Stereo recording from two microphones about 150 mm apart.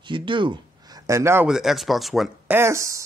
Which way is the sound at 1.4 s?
Centre (ahead or behind).